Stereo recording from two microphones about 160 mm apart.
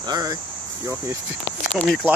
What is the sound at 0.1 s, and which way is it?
Speech, 25° right (ahead or behind).